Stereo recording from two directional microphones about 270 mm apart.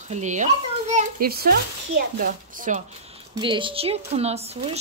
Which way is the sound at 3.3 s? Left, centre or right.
Centre.